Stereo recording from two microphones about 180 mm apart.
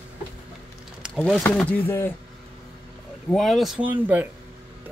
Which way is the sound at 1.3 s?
10° left (ahead or behind).